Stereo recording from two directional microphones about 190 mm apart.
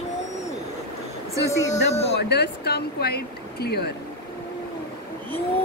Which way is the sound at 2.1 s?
60° left (ahead or behind).